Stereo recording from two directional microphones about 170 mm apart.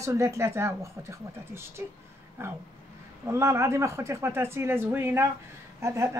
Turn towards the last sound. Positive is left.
turn(degrees=-15)  # may be behind; listen again after turning